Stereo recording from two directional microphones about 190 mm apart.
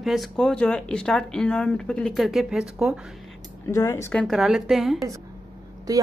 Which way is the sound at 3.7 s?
15° left (ahead or behind).